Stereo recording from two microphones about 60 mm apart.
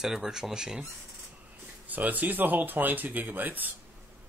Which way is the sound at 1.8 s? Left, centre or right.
Right.